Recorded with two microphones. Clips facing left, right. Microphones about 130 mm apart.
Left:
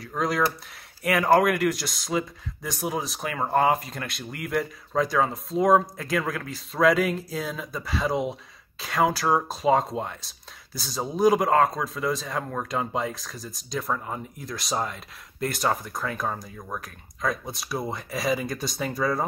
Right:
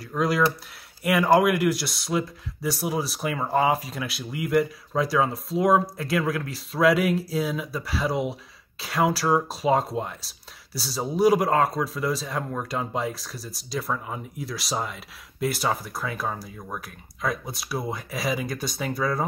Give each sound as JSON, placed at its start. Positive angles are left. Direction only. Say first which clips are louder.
{"t": 1.0, "sound": "speech", "louder": "right 1 dB", "side_deg": 0}